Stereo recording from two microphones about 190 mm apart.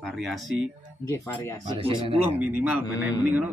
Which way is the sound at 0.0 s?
Centre (ahead or behind).